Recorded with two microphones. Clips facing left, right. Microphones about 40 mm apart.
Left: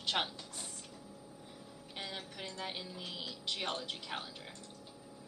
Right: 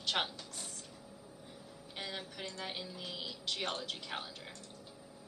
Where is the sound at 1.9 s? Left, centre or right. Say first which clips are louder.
Right 1 dB; centre.